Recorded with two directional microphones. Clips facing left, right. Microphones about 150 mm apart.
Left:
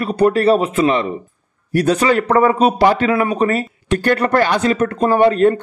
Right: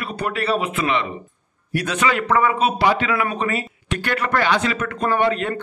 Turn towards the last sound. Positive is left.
turn(degrees=40)  # may be behind; listen again after turning